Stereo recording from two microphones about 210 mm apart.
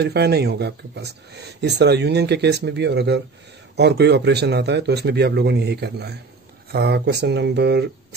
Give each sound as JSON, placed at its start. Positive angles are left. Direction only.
{"t": 0.0, "sound": "speech", "side_deg": -50}